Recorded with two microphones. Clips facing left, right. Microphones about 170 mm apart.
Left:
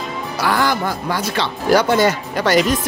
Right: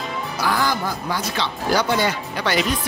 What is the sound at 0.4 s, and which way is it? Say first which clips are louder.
Speech: left 4 dB; 70° left (ahead or behind).